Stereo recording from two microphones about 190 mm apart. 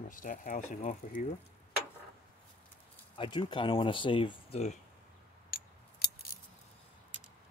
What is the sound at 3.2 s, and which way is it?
Speech, 25° left (ahead or behind).